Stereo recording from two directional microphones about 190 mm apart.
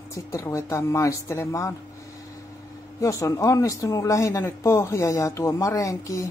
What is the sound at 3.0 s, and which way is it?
Speech, 15° left (ahead or behind).